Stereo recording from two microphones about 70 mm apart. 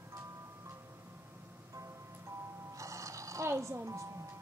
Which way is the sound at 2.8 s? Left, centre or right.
Right.